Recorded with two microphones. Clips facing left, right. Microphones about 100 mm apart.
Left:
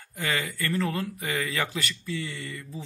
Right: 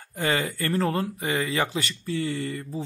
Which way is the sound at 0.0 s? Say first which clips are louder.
Right 4 dB; 30° right (ahead or behind).